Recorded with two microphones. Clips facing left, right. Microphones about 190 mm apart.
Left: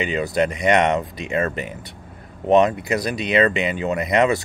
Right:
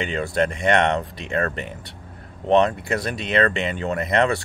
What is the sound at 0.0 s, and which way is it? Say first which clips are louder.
Speech: left 2 dB; 5° left (ahead or behind).